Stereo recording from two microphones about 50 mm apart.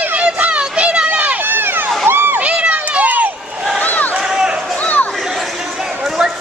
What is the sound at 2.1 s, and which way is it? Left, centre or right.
Crowd, right.